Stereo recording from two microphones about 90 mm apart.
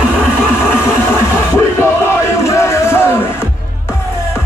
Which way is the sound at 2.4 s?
30° left (ahead or behind).